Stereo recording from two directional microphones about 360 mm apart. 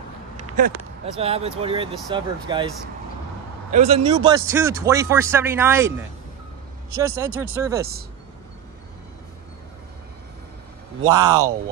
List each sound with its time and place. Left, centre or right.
0.6 s a man's voice: centre
3.7 s a man's voice: centre
7.0 s a man's voice: centre
11.1 s a man's voice: centre